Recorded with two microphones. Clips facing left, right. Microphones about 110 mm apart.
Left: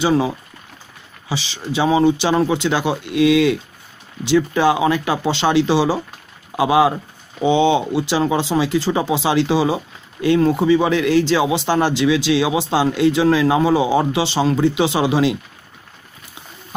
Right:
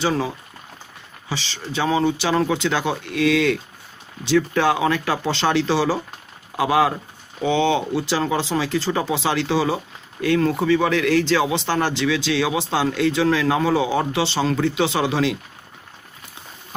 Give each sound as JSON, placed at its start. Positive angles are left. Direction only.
{"t": 0.0, "sound": "speech", "side_deg": 10}
{"t": 1.3, "sound": "speech", "side_deg": 10}